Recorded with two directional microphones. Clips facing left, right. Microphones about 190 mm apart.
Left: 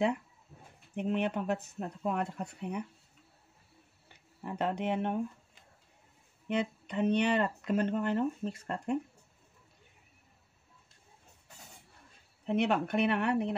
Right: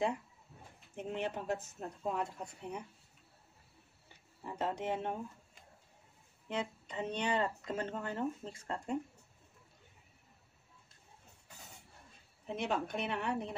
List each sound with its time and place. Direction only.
0.9 s speech: 65° left (ahead or behind)
4.4 s speech: 65° left (ahead or behind)
6.5 s speech: 65° left (ahead or behind)
12.4 s speech: 65° left (ahead or behind)